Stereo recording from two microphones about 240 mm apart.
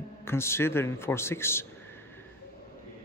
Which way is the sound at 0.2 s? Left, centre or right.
Centre.